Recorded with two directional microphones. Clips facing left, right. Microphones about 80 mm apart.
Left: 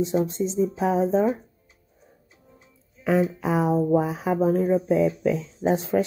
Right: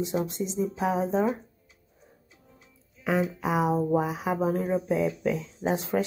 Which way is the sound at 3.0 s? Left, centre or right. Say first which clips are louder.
Left 4 dB; centre.